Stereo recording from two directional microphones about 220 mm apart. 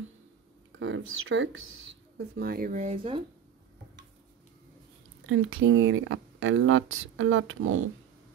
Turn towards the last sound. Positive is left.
turn(degrees=-65)  # may be behind; listen again after turning